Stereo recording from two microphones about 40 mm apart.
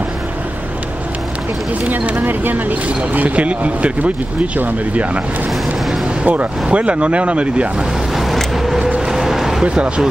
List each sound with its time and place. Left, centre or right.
1.9 s speech: right
6.2 s speech: right
8.6 s vehicle: centre
9.0 s a sound: centre